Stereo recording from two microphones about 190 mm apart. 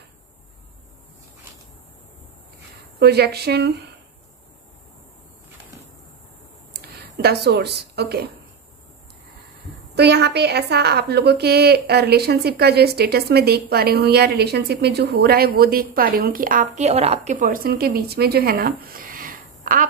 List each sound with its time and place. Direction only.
3.0 s a woman's voice: 60° right (ahead or behind)
6.7 s a sound: 55° right (ahead or behind)
9.9 s a woman's voice: 60° right (ahead or behind)
16.7 s a woman's voice: 35° right (ahead or behind)